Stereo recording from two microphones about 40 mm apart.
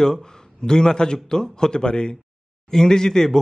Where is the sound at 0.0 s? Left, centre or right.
Centre.